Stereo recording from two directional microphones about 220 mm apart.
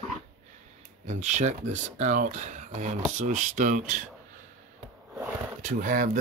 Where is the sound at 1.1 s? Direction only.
30° right (ahead or behind).